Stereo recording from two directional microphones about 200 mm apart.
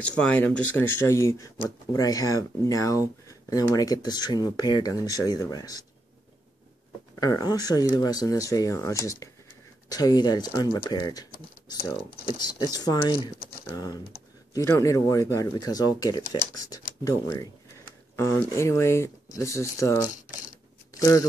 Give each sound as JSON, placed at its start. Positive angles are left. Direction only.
{"t": 0.0, "sound": "speech", "side_deg": 5}
{"t": 7.2, "sound": "speech", "side_deg": 20}
{"t": 12.7, "sound": "speech", "side_deg": 20}